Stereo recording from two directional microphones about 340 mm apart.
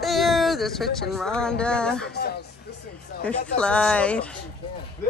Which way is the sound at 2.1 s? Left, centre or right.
Left.